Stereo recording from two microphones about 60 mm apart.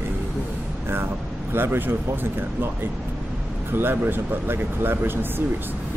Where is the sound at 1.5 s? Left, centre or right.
Right.